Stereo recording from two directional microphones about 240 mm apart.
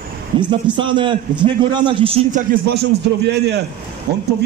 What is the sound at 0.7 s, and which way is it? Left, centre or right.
A man's voice, centre.